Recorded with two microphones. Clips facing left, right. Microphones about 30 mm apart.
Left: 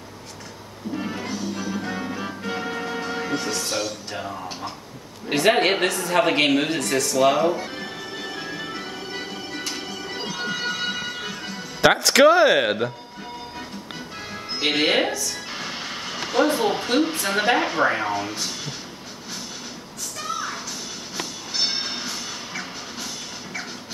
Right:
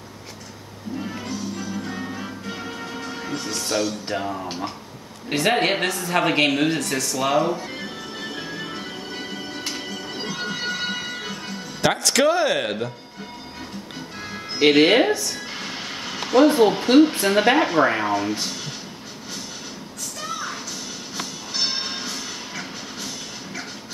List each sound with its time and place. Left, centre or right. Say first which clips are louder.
0.9 s music: left 1 dB; centre
4.1 s speech: right 4 dB; centre
5.3 s a woman's voice: left 2 dB; centre
7.7 s music: even; centre
11.8 s speech: left 4 dB; left
14.6 s a woman's voice: right 5 dB; centre
15.5 s a sound: even; centre
17.2 s a woman's voice: right 3 dB; centre
20.2 s a sound: left 1 dB; centre
21.2 s music: even; centre